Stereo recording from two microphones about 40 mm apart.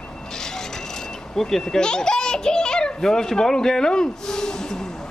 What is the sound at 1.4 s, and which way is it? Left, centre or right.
Speech, centre.